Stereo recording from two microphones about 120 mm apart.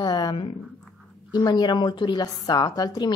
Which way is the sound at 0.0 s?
35° left (ahead or behind).